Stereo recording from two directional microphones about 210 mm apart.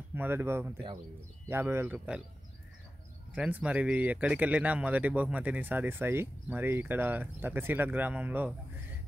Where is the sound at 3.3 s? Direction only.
5° right (ahead or behind).